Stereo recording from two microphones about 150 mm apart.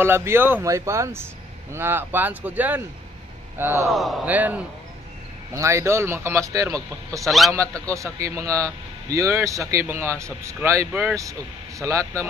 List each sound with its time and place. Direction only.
0.0 s speech: 15° right (ahead or behind)
3.9 s a man's voice: centre (ahead or behind)
4.3 s speech: 10° right (ahead or behind)
7.2 s a man's voice: centre (ahead or behind)
7.8 s speech: 20° right (ahead or behind)